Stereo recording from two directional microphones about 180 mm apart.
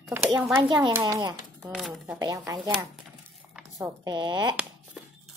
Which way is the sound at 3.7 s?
20° right (ahead or behind).